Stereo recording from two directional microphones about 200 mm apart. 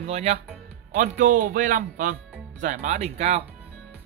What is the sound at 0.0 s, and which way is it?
Speech, 30° right (ahead or behind).